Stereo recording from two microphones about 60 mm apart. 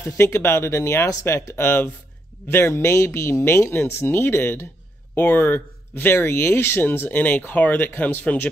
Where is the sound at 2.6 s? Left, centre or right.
Left.